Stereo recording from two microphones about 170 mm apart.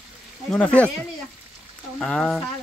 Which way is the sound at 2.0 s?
Centre (ahead or behind).